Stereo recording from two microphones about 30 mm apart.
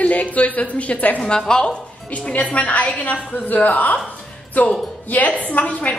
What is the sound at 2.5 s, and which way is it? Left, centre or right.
Speech, left.